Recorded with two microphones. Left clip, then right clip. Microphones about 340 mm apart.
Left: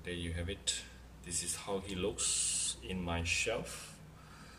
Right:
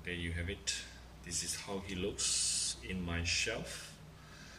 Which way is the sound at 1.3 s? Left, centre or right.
Centre.